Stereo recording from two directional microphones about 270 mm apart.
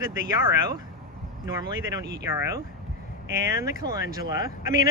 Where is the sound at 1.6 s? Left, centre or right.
Centre.